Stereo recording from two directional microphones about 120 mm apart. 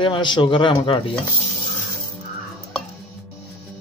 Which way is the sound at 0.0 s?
40° left (ahead or behind).